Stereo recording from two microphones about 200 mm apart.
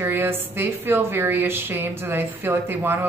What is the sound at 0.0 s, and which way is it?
A woman's voice, 10° right (ahead or behind).